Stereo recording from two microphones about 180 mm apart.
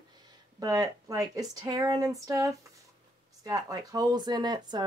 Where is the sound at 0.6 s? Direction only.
20° right (ahead or behind).